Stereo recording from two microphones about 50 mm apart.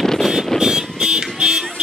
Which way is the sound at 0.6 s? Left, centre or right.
Centre.